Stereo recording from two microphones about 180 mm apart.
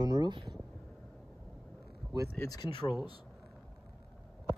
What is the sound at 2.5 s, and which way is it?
Speech, 25° left (ahead or behind).